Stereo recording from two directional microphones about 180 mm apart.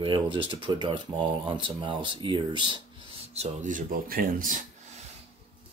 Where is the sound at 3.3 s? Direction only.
40° right (ahead or behind).